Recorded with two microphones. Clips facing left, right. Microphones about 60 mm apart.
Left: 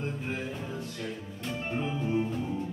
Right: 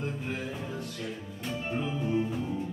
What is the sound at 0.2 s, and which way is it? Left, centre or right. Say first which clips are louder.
Music: even; centre.